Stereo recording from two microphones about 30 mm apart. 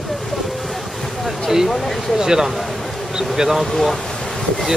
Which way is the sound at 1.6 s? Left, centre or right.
Centre.